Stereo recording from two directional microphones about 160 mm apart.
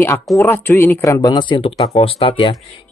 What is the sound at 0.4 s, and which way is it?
Speech, 15° left (ahead or behind).